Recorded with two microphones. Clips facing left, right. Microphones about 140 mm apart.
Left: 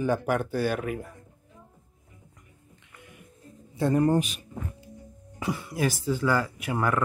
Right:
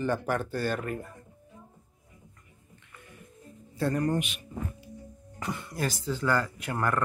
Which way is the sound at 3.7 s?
20° left (ahead or behind).